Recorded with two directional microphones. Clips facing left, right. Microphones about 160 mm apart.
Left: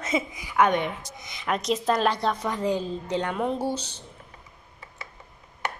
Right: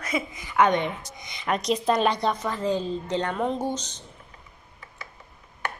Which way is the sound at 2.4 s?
15° left (ahead or behind).